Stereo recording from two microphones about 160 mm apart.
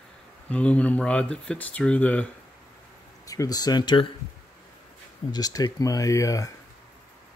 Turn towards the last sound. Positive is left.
turn(degrees=20)  # may be behind; listen again after turning